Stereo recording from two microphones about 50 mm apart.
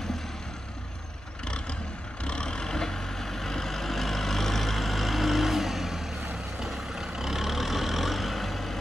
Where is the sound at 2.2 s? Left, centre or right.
Centre.